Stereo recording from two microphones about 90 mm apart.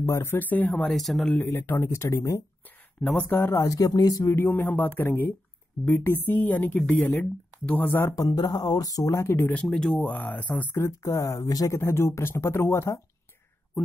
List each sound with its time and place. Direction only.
0.0 s speech: 30° left (ahead or behind)
0.9 s speech: centre (ahead or behind)
1.3 s speech: 20° left (ahead or behind)
3.6 s speech: 40° left (ahead or behind)
4.5 s speech: 20° left (ahead or behind)
8.2 s speech: 45° left (ahead or behind)
9.5 s speech: 10° left (ahead or behind)
10.0 s speech: 15° left (ahead or behind)
10.8 s speech: 35° left (ahead or behind)